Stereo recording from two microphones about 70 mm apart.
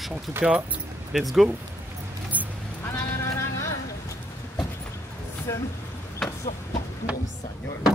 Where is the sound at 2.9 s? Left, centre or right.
Left.